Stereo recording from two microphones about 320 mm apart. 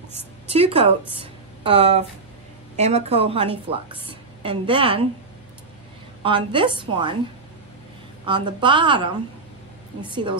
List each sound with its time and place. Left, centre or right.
0.5 s a woman's voice: centre
1.1 s a sound: centre
2.8 s a woman's voice: centre
6.2 s a woman's voice: centre
8.3 s a woman's voice: centre